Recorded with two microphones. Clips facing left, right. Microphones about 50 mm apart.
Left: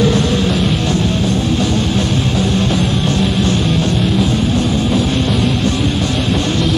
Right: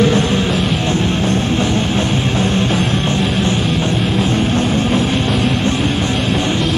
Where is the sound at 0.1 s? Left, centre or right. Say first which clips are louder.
Even; right.